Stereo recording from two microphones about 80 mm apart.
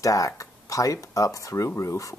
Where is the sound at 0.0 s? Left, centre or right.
Left.